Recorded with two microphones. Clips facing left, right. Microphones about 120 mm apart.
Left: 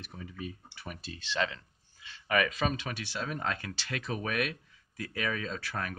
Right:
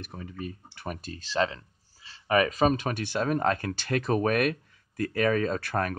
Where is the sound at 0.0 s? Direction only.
45° right (ahead or behind).